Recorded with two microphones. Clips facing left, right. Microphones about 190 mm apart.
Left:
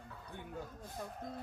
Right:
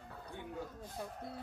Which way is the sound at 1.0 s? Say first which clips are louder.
Right 1 dB; 5° right (ahead or behind).